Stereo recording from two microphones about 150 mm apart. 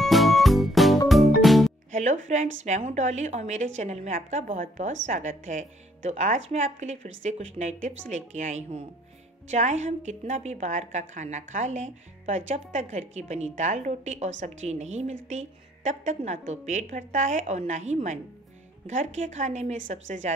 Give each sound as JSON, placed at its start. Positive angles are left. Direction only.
{"t": 0.0, "sound": "music", "side_deg": 0}
{"t": 1.9, "sound": "a woman's voice", "side_deg": -55}